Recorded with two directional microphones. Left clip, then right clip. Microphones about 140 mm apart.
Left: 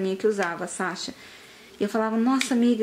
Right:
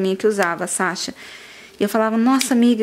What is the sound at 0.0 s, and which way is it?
Speech, 30° right (ahead or behind).